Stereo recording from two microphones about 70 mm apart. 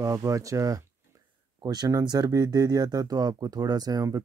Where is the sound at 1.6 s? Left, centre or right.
Right.